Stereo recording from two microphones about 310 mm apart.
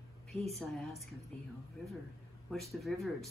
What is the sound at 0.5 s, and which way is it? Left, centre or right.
Speech, centre.